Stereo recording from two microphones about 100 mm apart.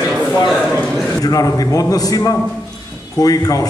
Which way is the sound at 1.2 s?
35° left (ahead or behind).